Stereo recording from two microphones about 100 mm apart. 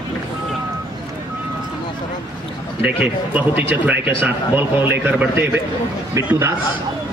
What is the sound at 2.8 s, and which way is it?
A man's voice, 15° right (ahead or behind).